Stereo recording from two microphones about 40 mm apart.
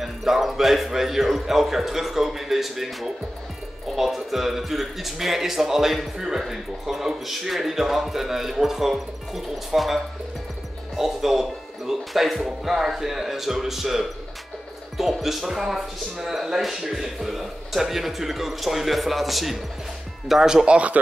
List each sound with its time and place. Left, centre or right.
0.0 s speech: centre
20.6 s speech: right